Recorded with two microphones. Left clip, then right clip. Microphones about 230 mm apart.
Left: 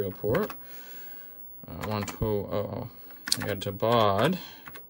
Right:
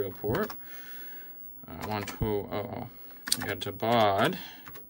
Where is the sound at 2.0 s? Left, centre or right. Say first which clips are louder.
Left 2 dB; left.